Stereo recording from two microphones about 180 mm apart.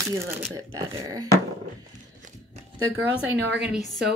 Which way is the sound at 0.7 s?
20° right (ahead or behind).